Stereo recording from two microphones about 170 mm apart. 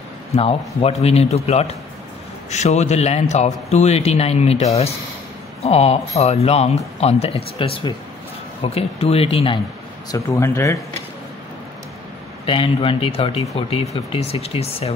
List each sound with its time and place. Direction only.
0.4 s speech: 35° left (ahead or behind)
10.1 s speech: 15° left (ahead or behind)
12.4 s speech: 30° left (ahead or behind)